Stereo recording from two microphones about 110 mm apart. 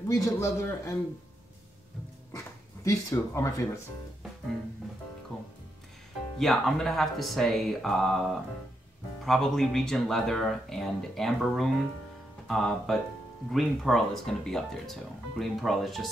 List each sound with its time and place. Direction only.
0.1 s a man's voice: 30° left (ahead or behind)
2.3 s speech: 30° left (ahead or behind)
5.3 s music: 10° left (ahead or behind)
6.3 s speech: 5° left (ahead or behind)